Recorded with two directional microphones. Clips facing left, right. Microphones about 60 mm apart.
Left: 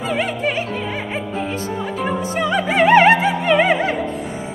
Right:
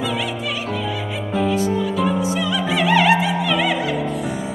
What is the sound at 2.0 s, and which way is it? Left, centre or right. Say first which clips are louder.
Music: right 1 dB; left.